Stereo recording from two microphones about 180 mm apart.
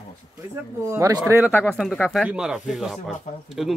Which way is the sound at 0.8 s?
15° right (ahead or behind).